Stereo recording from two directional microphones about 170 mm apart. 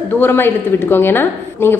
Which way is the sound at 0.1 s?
10° left (ahead or behind).